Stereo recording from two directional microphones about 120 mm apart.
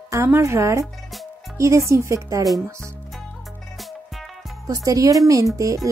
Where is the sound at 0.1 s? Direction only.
25° right (ahead or behind).